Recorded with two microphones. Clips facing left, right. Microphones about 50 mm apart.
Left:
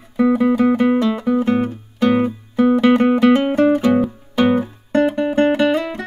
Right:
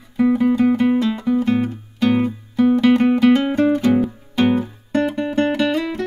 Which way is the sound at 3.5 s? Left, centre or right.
Left.